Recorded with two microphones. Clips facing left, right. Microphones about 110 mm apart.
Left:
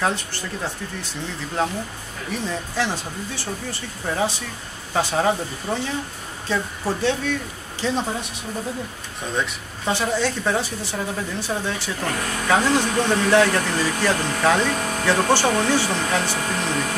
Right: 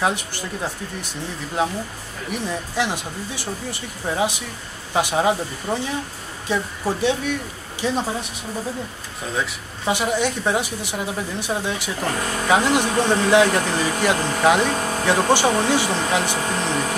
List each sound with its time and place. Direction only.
0.0 s a woman's voice: 15° right (ahead or behind)
2.3 s a woman's voice: 15° right (ahead or behind)
9.2 s speech: 5° right (ahead or behind)
9.9 s a woman's voice: 15° right (ahead or behind)